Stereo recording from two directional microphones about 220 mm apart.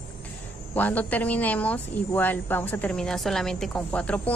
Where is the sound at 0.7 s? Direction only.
5° left (ahead or behind).